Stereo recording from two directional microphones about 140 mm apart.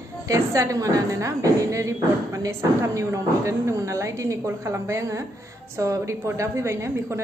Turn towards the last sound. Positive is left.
turn(degrees=-20)  # may be behind; listen again after turning